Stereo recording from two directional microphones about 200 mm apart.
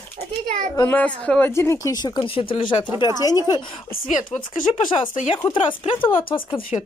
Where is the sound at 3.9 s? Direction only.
40° left (ahead or behind).